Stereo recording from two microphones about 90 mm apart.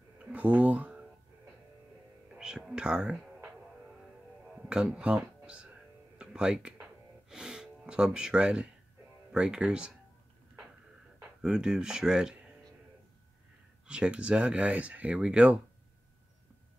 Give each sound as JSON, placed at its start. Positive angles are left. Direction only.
{"t": 0.2, "sound": "a sound", "side_deg": -15}
{"t": 2.3, "sound": "speech", "side_deg": -5}
{"t": 4.6, "sound": "music", "side_deg": -10}
{"t": 9.3, "sound": "speech", "side_deg": -10}
{"t": 11.4, "sound": "speech", "side_deg": -5}
{"t": 13.8, "sound": "speech", "side_deg": -10}